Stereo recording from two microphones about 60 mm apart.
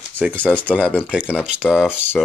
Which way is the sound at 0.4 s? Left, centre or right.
Left.